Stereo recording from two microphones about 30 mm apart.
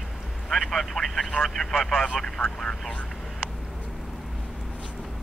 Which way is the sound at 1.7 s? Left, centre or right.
Centre.